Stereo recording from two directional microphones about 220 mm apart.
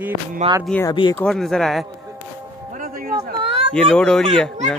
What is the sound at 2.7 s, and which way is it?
Music, 40° right (ahead or behind).